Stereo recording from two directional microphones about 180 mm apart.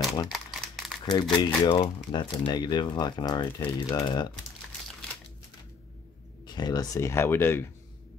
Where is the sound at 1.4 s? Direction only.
30° left (ahead or behind).